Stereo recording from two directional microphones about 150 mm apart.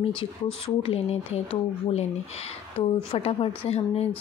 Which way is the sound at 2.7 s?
40° left (ahead or behind).